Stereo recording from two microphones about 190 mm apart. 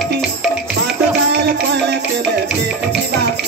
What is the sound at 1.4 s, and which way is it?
Music, 65° right (ahead or behind).